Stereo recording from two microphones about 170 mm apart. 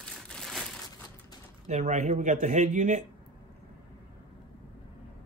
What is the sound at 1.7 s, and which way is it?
Speech, 45° right (ahead or behind).